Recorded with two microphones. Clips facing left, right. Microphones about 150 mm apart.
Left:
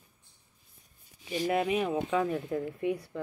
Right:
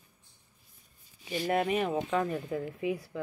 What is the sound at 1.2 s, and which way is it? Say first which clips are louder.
Speech: even; centre (ahead or behind).